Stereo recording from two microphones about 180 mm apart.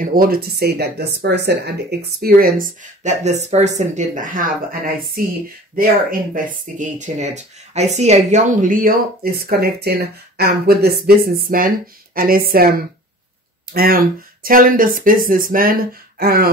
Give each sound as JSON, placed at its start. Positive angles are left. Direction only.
{"t": 0.0, "sound": "speech", "side_deg": -55}